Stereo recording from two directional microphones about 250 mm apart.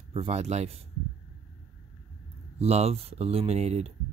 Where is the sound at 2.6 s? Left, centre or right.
Right.